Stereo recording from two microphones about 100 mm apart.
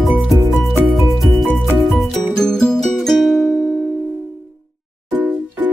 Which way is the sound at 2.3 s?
5° left (ahead or behind).